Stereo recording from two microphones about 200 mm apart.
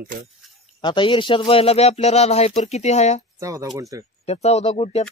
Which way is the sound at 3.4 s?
15° right (ahead or behind).